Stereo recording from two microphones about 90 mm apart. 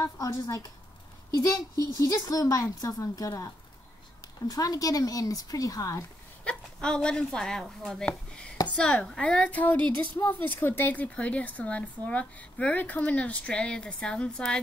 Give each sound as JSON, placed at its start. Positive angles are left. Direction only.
{"t": 0.0, "sound": "speech", "side_deg": 35}
{"t": 6.4, "sound": "speech", "side_deg": 10}